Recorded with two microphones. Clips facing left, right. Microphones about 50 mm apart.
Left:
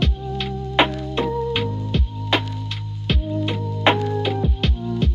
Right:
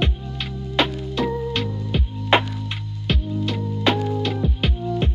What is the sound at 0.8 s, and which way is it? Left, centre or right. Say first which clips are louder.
Music: left 3 dB; centre.